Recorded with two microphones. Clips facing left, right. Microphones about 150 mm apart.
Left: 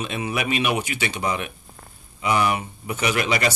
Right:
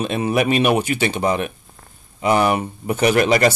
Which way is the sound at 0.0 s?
45° right (ahead or behind).